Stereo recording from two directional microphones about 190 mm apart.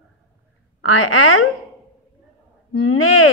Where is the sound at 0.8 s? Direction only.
90° left.